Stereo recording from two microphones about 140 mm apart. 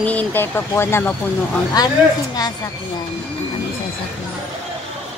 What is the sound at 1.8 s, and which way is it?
Speech, 30° left (ahead or behind).